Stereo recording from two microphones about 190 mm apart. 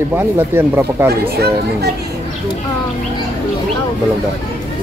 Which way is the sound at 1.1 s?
55° right (ahead or behind).